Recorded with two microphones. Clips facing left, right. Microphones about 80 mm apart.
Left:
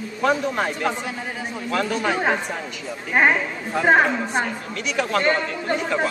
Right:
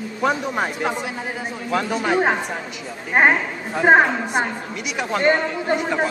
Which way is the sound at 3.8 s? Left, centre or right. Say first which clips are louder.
Right 3 dB; centre.